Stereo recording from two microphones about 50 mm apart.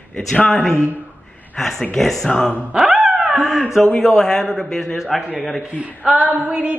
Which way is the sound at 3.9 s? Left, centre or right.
Centre.